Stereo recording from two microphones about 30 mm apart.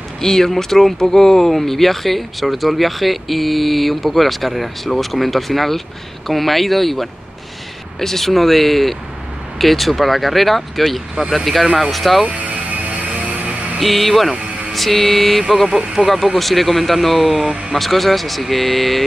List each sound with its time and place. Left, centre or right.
0.2 s speech: centre
12.8 s music: right
13.7 s speech: centre
16.0 s speech: right
16.3 s speech: centre